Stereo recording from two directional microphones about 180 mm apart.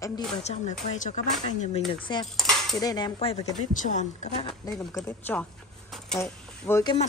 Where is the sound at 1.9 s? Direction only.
25° left (ahead or behind).